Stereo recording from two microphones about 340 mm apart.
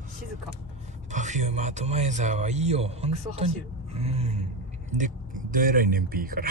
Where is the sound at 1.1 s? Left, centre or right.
Right.